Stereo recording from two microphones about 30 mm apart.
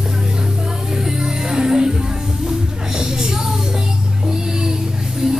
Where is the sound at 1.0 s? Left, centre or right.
Right.